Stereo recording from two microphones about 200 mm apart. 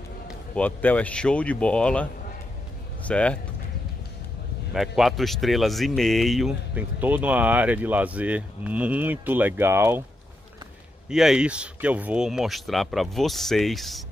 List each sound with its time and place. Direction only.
0.6 s speech: 10° left (ahead or behind)
4.7 s speech: centre (ahead or behind)
11.1 s speech: 5° right (ahead or behind)